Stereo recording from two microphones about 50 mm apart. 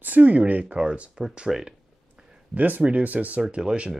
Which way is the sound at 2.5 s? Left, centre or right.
Right.